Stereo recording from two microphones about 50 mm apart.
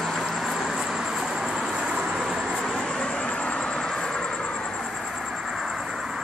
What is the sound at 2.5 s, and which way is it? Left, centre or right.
Vehicle, centre.